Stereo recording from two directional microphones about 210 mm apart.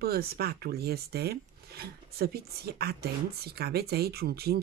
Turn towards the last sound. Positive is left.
turn(degrees=-50)  # may be behind; listen again after turning